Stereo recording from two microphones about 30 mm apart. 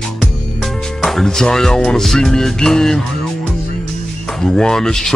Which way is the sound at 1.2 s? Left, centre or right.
Centre.